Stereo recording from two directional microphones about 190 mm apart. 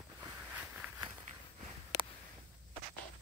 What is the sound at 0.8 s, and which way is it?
Walk, 5° right (ahead or behind).